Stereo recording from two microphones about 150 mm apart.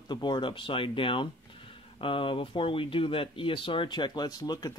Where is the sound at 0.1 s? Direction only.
30° left (ahead or behind).